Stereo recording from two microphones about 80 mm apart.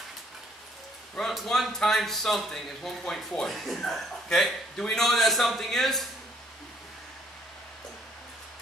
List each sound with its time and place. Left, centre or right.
1.1 s a man's voice: centre